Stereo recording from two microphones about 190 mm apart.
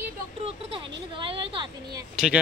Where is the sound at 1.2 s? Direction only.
25° right (ahead or behind).